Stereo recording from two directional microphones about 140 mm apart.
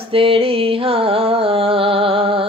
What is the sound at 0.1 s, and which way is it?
Music, 40° right (ahead or behind).